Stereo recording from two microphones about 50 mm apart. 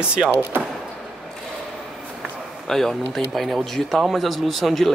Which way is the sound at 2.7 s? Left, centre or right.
Centre.